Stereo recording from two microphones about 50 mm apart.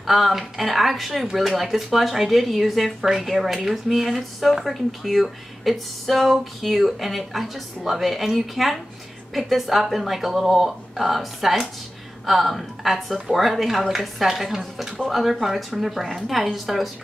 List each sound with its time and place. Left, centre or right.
0.0 s speech: centre